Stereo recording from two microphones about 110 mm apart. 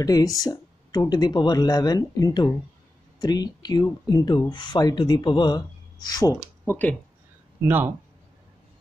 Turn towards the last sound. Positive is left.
turn(degrees=-20)  # may be behind; listen again after turning